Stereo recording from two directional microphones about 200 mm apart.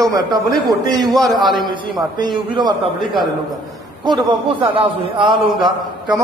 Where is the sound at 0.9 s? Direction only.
20° right (ahead or behind).